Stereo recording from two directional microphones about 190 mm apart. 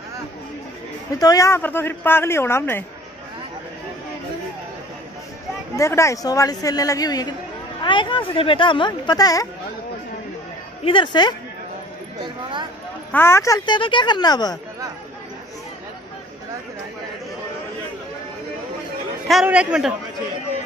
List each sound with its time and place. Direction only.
1.1 s speech: 20° left (ahead or behind)
5.8 s speech: 15° left (ahead or behind)
10.8 s speech: 25° left (ahead or behind)
13.1 s speech: 15° left (ahead or behind)
19.2 s a man's voice: 5° right (ahead or behind)